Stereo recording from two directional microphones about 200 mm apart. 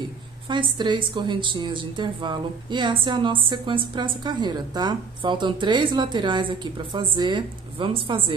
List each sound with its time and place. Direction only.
0.5 s a woman's voice: 25° right (ahead or behind)